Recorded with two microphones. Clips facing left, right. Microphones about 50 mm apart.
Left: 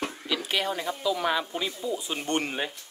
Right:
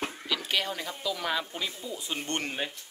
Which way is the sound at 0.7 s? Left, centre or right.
Left.